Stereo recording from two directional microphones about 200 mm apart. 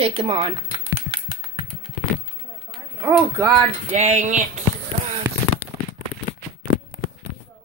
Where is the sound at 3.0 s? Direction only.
15° right (ahead or behind).